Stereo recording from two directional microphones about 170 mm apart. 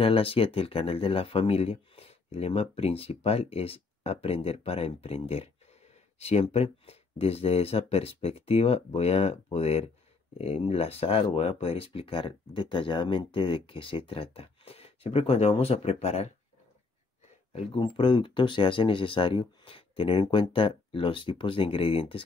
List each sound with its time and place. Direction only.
0.0 s speech: 35° left (ahead or behind)
17.5 s speech: 30° left (ahead or behind)